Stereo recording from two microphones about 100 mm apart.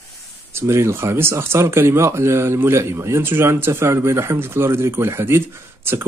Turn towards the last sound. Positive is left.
turn(degrees=-25)  # may be behind; listen again after turning